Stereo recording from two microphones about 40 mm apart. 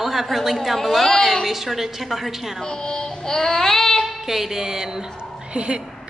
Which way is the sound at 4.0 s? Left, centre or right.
Centre.